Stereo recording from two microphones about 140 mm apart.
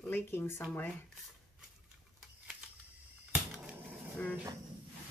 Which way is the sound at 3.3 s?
5° right (ahead or behind).